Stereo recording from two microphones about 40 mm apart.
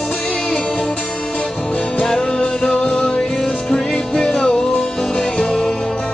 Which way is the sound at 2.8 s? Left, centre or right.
Centre.